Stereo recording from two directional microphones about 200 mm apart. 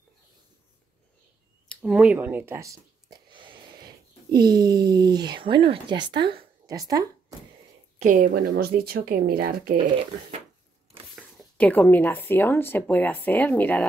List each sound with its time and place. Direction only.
1.7 s speech: 5° right (ahead or behind)
8.0 s speech: 40° right (ahead or behind)
11.1 s speech: 5° left (ahead or behind)